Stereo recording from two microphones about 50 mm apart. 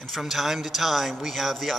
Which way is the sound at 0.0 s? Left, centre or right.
Centre.